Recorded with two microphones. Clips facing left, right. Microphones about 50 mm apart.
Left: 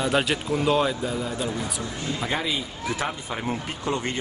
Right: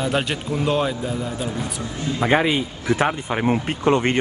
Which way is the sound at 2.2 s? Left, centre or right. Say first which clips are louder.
Right 11 dB; right.